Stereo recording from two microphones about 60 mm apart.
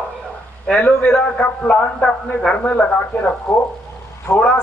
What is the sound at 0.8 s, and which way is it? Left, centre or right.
Speech, left.